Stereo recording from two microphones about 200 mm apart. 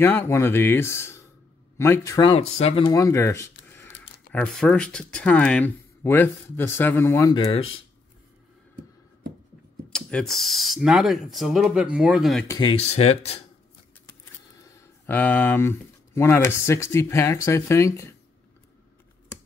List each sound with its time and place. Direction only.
0.0 s speech: 10° left (ahead or behind); by 2.9 s 30° left (ahead or behind)
2.9 s speech: 15° left (ahead or behind)
9.8 s speech: 5° left (ahead or behind)
12.4 s speech: 20° left (ahead or behind)
12.7 s speech: 30° left (ahead or behind)
14.6 s a sound: 10° left (ahead or behind)
16.2 s speech: 10° left (ahead or behind)